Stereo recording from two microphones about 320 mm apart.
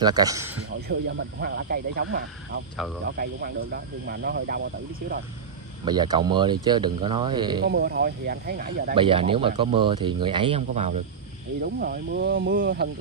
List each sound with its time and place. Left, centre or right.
0.0 s speech: centre
0.8 s speech: right
5.9 s speech: centre
7.6 s speech: right
8.9 s speech: centre